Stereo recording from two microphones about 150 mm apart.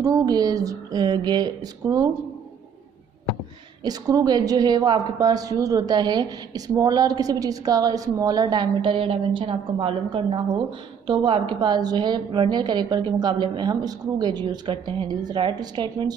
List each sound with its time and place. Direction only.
0.0 s a woman's voice: 25° right (ahead or behind)
3.8 s a woman's voice: 25° right (ahead or behind)